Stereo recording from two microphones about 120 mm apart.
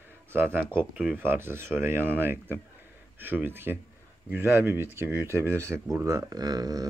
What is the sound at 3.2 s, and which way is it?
Speech, 15° right (ahead or behind).